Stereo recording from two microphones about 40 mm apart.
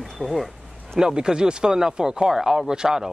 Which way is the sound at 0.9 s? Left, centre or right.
Centre.